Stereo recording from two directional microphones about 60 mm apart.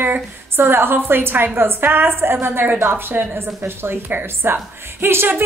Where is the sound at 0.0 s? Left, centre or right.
Right.